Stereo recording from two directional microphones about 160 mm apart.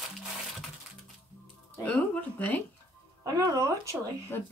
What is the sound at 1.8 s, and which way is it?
Speech, 10° left (ahead or behind).